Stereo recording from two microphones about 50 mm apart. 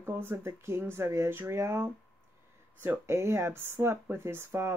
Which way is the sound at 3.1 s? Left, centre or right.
Right.